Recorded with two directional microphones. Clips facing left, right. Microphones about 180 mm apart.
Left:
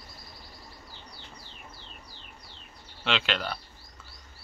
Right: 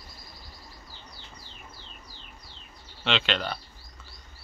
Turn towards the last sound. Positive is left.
turn(degrees=5)  # may be behind; listen again after turning